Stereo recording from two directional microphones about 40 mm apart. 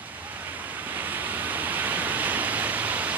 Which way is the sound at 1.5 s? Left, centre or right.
Right.